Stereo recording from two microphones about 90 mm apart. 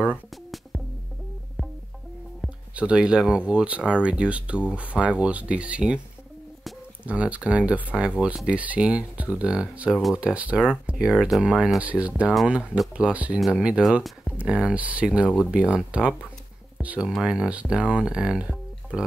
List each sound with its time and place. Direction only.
2.7 s speech: 10° right (ahead or behind)
7.1 s speech: 15° right (ahead or behind)